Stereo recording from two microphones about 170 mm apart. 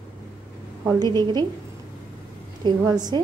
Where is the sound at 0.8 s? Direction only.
25° right (ahead or behind).